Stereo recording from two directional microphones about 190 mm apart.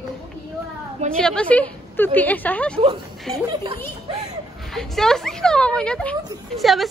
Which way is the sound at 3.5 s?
20° right (ahead or behind).